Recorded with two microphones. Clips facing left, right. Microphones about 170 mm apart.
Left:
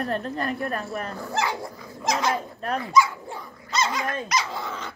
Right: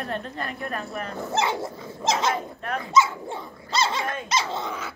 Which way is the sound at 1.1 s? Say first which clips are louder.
Right 4 dB; 20° right (ahead or behind).